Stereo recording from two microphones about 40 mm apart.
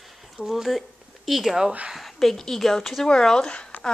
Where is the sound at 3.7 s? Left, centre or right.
Left.